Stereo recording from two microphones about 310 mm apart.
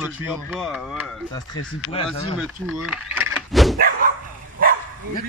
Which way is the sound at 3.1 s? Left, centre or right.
Centre.